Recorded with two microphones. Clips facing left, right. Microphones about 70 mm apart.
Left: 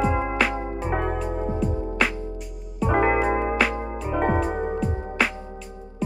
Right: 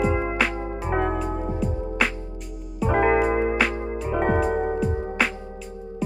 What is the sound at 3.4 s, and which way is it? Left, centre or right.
Music, centre.